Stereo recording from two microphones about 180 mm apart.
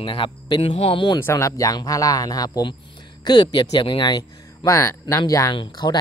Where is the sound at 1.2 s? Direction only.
15° left (ahead or behind).